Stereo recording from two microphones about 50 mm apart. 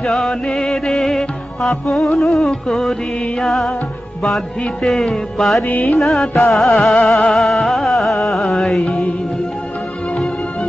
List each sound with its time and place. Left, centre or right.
0.0 s music: centre
4.8 s music: centre
5.7 s music: left
5.9 s music: centre